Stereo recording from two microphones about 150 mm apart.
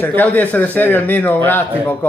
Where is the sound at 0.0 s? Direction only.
10° left (ahead or behind).